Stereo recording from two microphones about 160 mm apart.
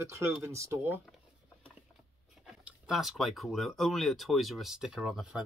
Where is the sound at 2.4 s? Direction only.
5° right (ahead or behind).